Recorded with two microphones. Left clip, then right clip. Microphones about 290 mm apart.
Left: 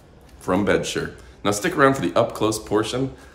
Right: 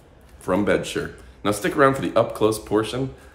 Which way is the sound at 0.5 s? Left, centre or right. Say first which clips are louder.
Left 1 dB; centre.